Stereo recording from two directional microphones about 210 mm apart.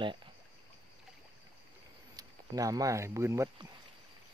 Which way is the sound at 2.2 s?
15° right (ahead or behind).